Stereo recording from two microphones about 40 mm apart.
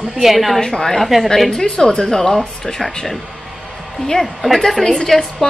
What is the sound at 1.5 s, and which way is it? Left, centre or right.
Speech, centre.